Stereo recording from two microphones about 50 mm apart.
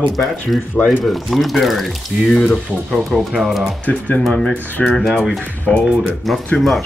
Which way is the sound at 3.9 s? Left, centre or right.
Left.